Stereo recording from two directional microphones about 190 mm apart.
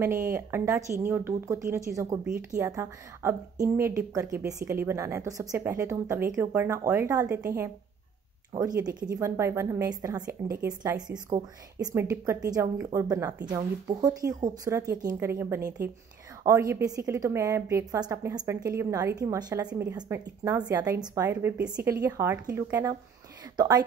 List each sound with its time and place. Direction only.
0.0 s a woman's voice: 10° right (ahead or behind)